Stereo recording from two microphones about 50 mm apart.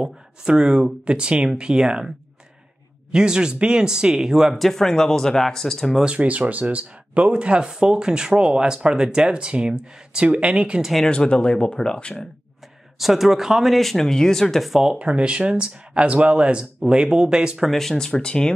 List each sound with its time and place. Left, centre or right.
0.0 s speech: centre
6.0 s speech: right
11.1 s speech: left
13.0 s speech: centre
15.0 s speech: right
17.6 s speech: centre